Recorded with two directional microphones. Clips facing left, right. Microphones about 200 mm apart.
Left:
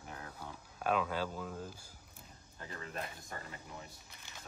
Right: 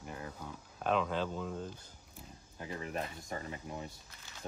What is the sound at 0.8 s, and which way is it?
Speech, 5° left (ahead or behind).